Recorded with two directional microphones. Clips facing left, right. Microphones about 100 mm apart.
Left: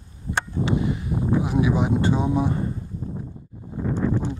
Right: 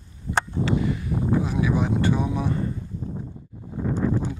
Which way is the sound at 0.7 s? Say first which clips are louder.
Even; 20° left (ahead or behind).